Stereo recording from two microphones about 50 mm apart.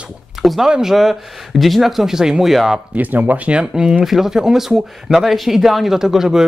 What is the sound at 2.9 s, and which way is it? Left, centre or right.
Speech, right.